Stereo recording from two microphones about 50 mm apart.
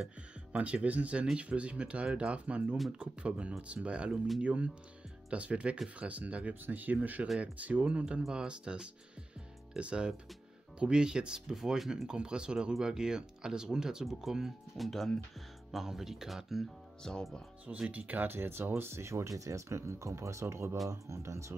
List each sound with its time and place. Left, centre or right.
0.5 s speech: right
7.8 s speech: right; by 12.1 s centre
12.1 s speech: centre
14.9 s speech: centre
15.7 s speech: centre
17.0 s speech: centre
17.6 s speech: right
20.9 s speech: right